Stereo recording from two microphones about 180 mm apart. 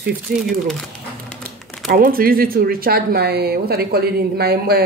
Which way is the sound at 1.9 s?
55° right (ahead or behind).